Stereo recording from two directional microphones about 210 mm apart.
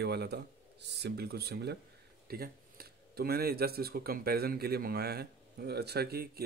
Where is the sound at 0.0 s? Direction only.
50° right (ahead or behind).